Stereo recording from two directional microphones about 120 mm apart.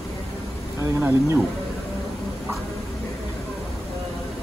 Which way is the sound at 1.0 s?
15° right (ahead or behind).